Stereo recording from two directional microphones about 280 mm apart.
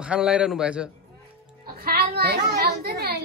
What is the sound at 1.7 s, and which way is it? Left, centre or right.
Music, right.